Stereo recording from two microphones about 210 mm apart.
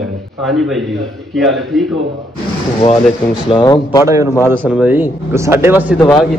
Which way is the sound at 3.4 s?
25° left (ahead or behind).